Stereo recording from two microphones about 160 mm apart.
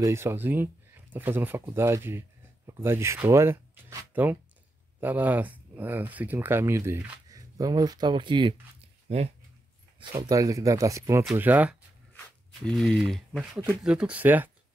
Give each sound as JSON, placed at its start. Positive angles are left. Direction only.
{"t": 0.0, "sound": "speech", "side_deg": -15}
{"t": 9.9, "sound": "speech", "side_deg": -25}
{"t": 12.6, "sound": "speech", "side_deg": 0}